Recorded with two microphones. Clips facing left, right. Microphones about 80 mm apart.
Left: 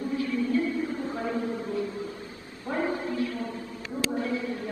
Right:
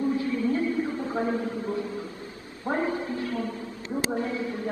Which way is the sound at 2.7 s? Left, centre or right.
Right.